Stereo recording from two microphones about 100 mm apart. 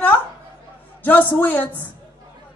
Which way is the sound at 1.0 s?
15° left (ahead or behind).